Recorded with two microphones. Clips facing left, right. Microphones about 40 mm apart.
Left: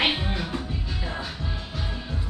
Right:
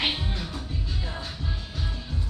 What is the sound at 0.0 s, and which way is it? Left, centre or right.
Music, left.